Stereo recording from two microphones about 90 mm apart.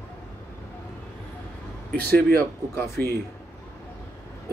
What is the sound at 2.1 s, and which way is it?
Speech, 25° left (ahead or behind).